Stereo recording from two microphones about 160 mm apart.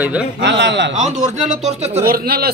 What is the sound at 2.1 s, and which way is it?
Speech, 70° right (ahead or behind).